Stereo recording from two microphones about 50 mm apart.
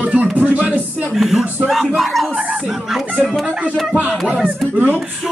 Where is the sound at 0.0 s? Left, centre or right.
Right.